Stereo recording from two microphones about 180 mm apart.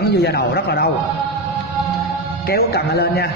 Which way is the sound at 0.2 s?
65° left (ahead or behind).